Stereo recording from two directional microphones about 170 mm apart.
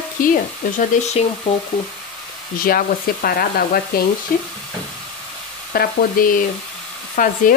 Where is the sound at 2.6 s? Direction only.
60° left (ahead or behind).